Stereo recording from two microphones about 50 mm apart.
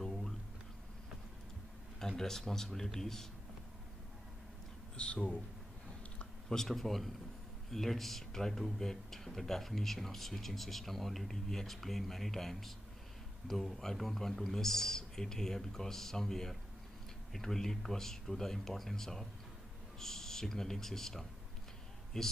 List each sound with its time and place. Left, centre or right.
0.0 s a sound: centre
2.0 s speech: centre
4.9 s speech: left
6.5 s speech: centre